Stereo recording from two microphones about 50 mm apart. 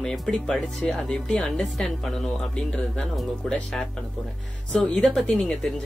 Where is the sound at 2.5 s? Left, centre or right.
Left.